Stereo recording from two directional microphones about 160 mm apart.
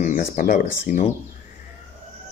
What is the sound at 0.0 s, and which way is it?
Speech, 60° left (ahead or behind).